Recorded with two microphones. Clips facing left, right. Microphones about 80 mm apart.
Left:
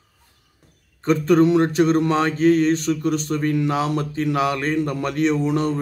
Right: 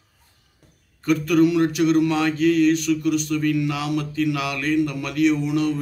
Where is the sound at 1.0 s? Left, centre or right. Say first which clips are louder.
Left 2 dB; left.